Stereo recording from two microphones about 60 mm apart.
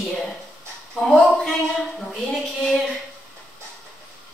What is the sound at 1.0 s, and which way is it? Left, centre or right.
A woman's voice, centre.